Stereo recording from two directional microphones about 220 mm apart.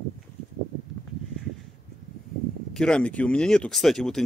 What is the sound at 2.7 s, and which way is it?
Speech, 5° left (ahead or behind).